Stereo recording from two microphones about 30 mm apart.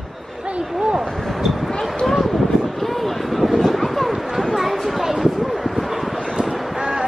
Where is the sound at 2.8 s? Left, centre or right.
Centre.